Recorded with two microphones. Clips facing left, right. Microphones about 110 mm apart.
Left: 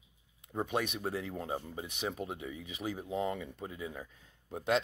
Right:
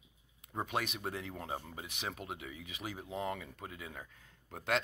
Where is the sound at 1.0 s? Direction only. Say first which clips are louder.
Left 4 dB; 25° left (ahead or behind).